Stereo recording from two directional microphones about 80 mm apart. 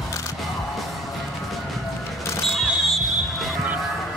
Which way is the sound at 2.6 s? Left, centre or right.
Centre.